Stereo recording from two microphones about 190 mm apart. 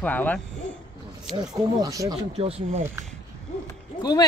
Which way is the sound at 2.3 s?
30° right (ahead or behind).